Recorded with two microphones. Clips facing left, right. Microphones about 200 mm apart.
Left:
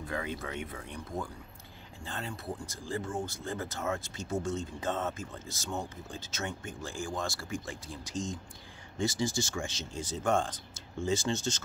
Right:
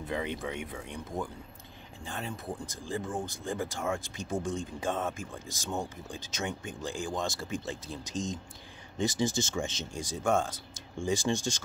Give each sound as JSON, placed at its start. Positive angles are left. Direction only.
{"t": 0.1, "sound": "speech", "side_deg": -20}
{"t": 2.0, "sound": "speech", "side_deg": -15}